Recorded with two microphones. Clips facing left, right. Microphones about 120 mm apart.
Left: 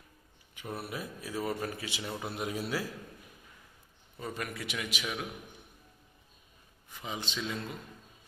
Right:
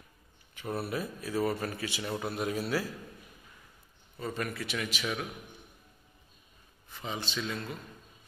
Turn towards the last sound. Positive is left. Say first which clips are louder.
# right 1 dB
turn(degrees=20)  # may be behind; listen again after turning